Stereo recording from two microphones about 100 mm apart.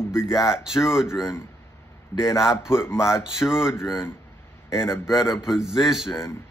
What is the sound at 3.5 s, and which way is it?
Speech, 5° right (ahead or behind).